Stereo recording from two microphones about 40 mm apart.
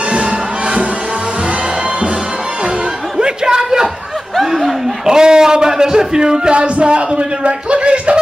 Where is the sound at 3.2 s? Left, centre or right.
Right.